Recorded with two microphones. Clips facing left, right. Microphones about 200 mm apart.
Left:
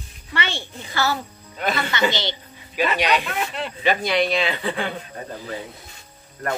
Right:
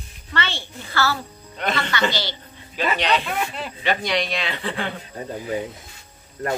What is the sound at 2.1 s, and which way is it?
A woman's voice, 20° left (ahead or behind).